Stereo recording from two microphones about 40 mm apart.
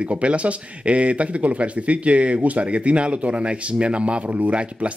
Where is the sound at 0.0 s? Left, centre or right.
Right.